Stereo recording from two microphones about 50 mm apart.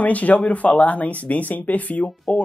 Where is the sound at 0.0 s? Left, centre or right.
Left.